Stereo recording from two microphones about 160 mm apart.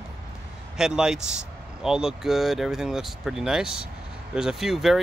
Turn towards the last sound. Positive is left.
turn(degrees=0)  # may be behind; listen again after turning